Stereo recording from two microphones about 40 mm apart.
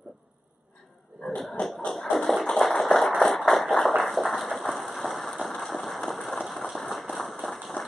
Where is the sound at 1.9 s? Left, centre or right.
Centre.